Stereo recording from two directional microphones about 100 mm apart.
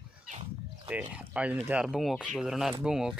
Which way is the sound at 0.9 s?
15° right (ahead or behind).